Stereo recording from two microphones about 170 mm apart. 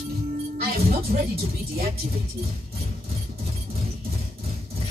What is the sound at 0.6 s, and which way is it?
Music, 60° right (ahead or behind).